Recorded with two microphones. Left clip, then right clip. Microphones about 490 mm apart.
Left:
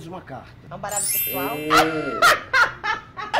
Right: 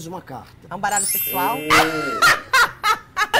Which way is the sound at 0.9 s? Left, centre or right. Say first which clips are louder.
Right 5 dB; centre.